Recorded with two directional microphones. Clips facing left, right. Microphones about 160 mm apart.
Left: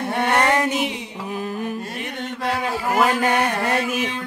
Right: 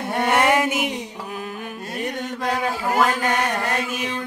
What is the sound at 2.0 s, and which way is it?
Mantra, 45° right (ahead or behind).